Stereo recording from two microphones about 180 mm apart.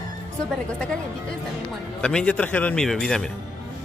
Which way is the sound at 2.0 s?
5° left (ahead or behind).